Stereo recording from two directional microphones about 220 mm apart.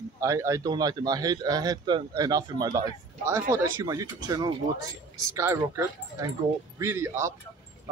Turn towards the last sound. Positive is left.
turn(degrees=-10)  # may be behind; listen again after turning